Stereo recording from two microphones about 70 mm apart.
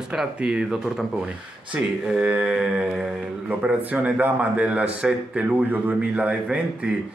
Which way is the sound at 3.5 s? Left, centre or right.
Right.